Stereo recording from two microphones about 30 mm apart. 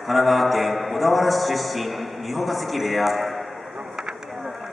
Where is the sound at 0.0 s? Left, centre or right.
Centre.